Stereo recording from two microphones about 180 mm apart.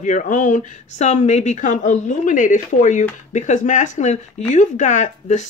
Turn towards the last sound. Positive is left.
turn(degrees=40)  # may be behind; listen again after turning